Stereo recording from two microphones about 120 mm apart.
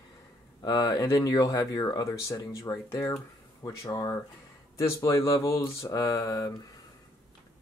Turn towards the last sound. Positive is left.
turn(degrees=30)  # may be behind; listen again after turning